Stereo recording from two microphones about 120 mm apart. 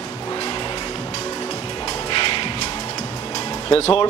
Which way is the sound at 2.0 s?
40° left (ahead or behind).